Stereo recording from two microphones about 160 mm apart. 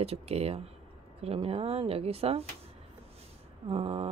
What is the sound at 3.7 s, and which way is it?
Speech, 35° right (ahead or behind).